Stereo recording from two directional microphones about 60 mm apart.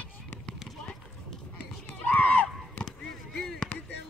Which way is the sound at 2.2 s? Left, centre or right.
Left.